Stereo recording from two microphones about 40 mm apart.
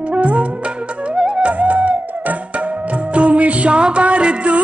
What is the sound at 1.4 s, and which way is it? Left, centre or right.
Music, right.